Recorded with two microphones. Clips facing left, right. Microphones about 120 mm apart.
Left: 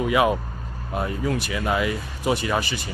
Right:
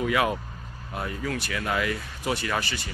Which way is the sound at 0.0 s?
20° left (ahead or behind).